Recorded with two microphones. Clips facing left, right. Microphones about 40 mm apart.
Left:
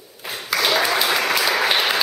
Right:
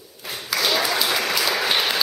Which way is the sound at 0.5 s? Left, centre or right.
Centre.